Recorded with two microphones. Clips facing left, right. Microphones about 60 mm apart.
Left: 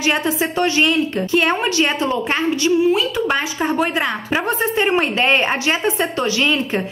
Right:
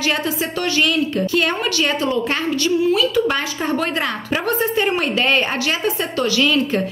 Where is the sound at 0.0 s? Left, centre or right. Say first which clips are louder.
Left 2 dB; left.